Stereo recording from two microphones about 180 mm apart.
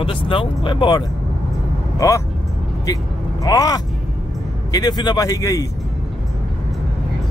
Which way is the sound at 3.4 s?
20° left (ahead or behind).